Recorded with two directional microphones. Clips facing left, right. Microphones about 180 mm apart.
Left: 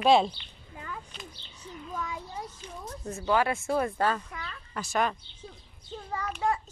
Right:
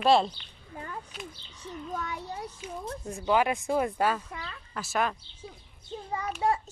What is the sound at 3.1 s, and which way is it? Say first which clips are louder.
Speech: right 1 dB; 15° right (ahead or behind).